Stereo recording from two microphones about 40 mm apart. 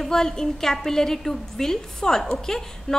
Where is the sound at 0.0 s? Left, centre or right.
Centre.